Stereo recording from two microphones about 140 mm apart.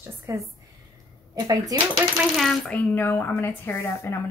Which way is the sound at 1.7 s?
25° right (ahead or behind).